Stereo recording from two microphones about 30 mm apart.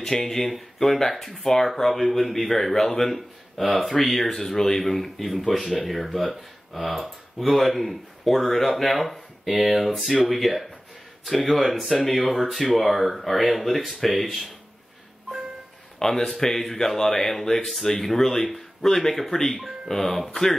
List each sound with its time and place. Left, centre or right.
0.2 s a man's voice: centre
16.0 s a man's voice: centre